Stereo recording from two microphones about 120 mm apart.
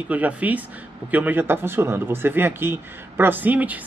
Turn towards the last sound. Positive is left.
turn(degrees=-15)  # may be behind; listen again after turning